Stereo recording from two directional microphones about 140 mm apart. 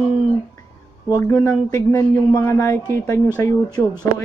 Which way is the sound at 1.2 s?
20° left (ahead or behind).